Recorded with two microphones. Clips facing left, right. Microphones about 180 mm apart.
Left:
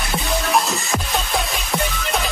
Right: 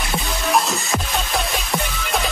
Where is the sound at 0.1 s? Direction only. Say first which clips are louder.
Left 1 dB; centre (ahead or behind).